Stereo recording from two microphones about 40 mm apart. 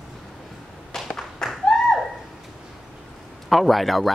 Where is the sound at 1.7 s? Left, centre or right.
Left.